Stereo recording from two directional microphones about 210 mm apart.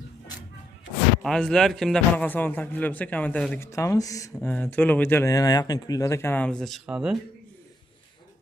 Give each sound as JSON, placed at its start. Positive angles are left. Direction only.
{"t": 1.2, "sound": "a man's voice", "side_deg": 5}